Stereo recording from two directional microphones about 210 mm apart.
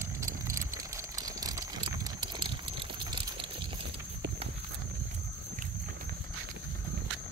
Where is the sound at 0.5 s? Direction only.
15° right (ahead or behind).